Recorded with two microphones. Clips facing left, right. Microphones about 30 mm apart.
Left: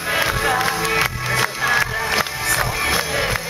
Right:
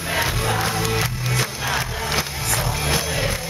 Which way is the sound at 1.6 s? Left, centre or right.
Left.